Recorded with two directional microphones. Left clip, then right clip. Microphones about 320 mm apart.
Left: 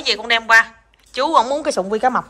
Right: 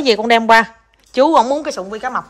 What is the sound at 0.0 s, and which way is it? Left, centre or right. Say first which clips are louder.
A woman's voice: right 5 dB; centre.